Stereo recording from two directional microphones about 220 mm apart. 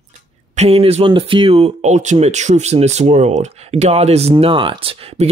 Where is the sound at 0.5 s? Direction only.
25° right (ahead or behind).